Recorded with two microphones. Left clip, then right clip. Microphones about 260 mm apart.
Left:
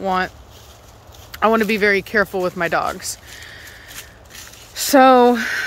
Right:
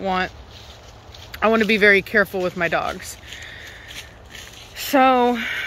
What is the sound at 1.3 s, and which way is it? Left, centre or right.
Speech, centre.